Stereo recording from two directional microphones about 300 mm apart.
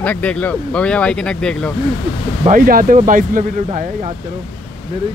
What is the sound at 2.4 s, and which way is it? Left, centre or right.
Speech, right.